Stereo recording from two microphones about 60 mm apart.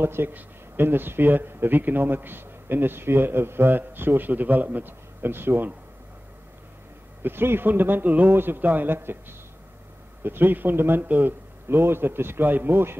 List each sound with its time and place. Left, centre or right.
0.0 s speech: right
7.2 s speech: right
10.2 s speech: right